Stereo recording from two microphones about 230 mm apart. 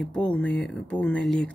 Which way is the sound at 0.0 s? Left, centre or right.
Centre.